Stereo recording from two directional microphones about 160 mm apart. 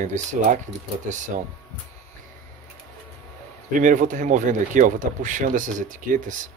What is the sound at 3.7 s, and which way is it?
Speech, 55° right (ahead or behind).